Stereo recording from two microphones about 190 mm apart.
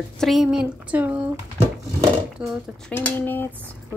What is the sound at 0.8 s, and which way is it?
Speech, 10° right (ahead or behind).